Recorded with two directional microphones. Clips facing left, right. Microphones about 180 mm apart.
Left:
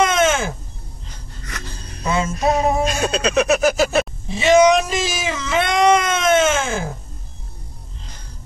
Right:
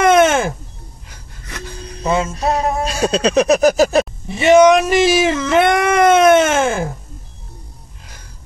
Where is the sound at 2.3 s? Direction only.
30° right (ahead or behind).